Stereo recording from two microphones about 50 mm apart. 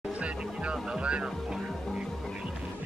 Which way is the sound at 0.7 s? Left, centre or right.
Right.